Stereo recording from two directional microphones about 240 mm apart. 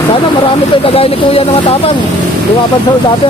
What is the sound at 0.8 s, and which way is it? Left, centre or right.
Speech, left.